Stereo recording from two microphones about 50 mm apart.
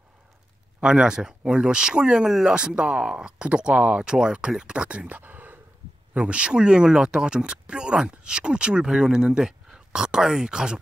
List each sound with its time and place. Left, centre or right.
0.8 s speech: centre; by 5.6 s right
6.1 s speech: right